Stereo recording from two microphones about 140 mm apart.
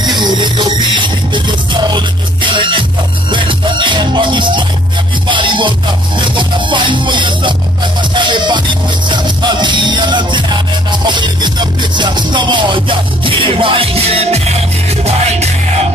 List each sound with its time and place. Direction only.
0.0 s music: 30° right (ahead or behind); by 15.5 s 50° right (ahead or behind)